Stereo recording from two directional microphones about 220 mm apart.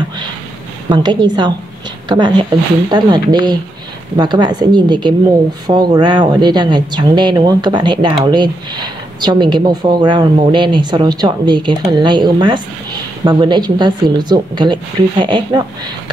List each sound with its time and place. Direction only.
0.8 s speech: 20° right (ahead or behind)